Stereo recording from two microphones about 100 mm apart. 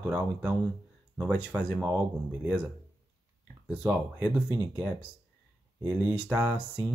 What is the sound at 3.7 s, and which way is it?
Speech, 20° right (ahead or behind).